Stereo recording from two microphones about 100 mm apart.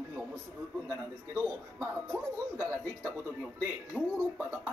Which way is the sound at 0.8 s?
25° right (ahead or behind).